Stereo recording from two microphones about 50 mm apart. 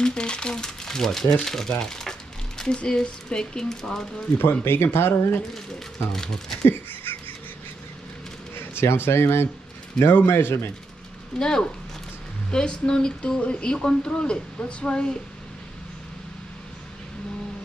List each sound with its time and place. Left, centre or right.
0.0 s speech: centre
4.4 s a man's voice: left
6.1 s speech: centre
6.7 s a sound: left
8.8 s a man's voice: left
11.3 s speech: centre